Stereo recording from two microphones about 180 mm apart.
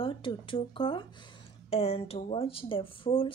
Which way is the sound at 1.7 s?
35° left (ahead or behind).